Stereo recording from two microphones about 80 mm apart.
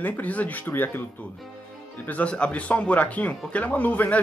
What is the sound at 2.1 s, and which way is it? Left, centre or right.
Speech, centre.